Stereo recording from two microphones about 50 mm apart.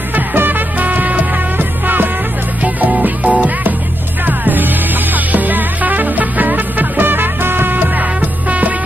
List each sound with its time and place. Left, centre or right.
0.1 s music: right